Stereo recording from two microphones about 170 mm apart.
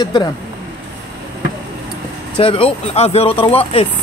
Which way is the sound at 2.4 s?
35° left (ahead or behind).